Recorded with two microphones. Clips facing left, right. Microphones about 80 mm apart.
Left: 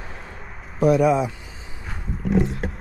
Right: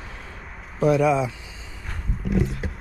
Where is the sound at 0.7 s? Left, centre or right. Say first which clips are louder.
Left 2 dB; left.